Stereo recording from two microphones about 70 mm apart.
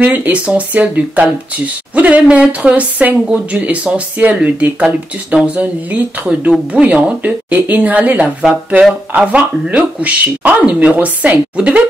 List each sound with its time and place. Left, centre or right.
0.0 s speech: right
4.8 s speech: centre
5.6 s speech: right